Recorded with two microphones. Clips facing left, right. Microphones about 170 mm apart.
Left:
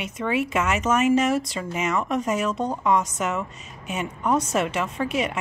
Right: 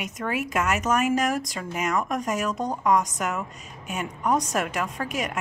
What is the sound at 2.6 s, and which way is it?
Speech, centre (ahead or behind).